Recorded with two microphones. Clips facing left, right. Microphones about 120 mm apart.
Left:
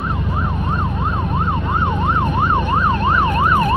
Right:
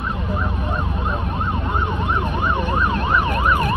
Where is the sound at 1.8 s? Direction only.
45° left (ahead or behind).